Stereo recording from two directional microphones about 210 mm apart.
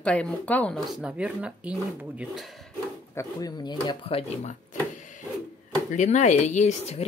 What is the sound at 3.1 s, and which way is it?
Speech, 15° left (ahead or behind).